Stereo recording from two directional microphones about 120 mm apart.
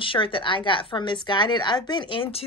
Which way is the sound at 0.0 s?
45° left (ahead or behind).